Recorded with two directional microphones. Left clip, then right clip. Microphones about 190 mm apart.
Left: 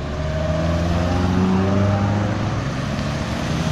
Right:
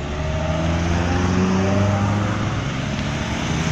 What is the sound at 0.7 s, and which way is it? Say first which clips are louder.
Vehicle: even; 30° left (ahead or behind).